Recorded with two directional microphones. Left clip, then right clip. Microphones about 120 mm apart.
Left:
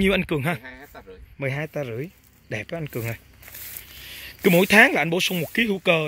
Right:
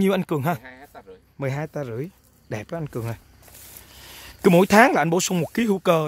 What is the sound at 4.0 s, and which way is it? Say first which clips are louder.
Speech: right 2 dB; 50° right (ahead or behind).